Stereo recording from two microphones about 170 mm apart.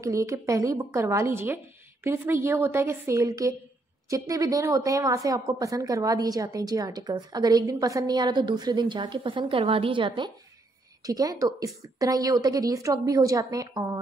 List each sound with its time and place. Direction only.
0.0 s a woman's voice: 20° right (ahead or behind)